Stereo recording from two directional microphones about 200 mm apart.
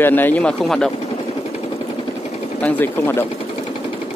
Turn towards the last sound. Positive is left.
turn(degrees=10)  # may be behind; listen again after turning